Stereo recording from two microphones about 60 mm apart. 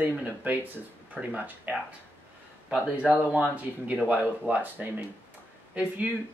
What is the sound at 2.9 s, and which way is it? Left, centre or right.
Speech, right.